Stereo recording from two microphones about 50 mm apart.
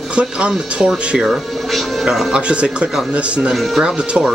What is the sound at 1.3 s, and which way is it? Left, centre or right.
Speech, centre.